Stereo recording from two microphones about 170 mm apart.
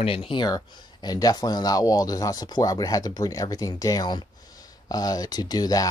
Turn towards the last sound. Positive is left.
turn(degrees=20)  # may be behind; listen again after turning